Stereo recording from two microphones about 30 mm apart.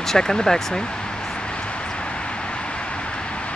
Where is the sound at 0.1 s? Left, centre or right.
Centre.